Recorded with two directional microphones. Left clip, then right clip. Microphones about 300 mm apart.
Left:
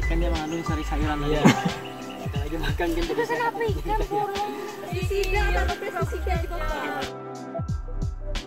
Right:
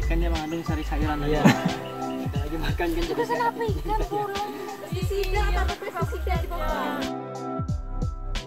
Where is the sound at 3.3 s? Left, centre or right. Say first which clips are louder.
Even; left.